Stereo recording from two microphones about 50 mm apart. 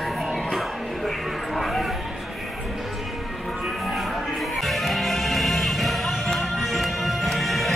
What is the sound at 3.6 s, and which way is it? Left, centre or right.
Music, centre.